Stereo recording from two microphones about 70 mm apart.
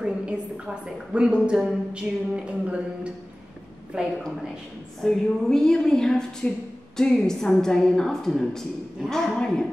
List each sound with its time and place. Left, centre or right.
0.0 s a sound: centre
1.1 s a woman's voice: centre
5.0 s a woman's voice: centre